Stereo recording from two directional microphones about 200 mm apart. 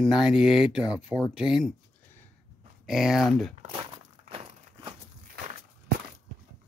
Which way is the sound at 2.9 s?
Centre (ahead or behind).